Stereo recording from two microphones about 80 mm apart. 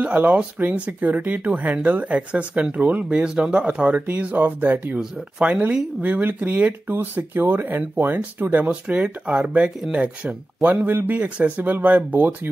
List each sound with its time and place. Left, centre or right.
0.0 s speech: centre